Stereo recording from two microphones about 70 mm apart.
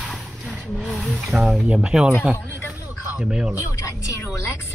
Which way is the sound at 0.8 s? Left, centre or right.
Centre.